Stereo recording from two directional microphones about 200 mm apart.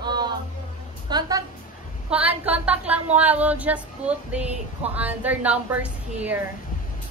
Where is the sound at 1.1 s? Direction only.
20° right (ahead or behind).